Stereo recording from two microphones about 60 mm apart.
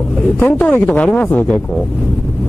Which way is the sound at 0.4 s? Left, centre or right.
Left.